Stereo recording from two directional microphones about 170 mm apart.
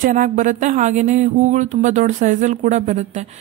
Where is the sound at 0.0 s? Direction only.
50° right (ahead or behind).